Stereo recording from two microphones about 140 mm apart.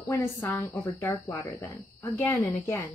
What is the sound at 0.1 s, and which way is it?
Speech, 20° left (ahead or behind).